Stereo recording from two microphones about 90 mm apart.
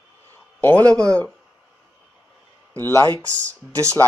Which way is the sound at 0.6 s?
20° left (ahead or behind).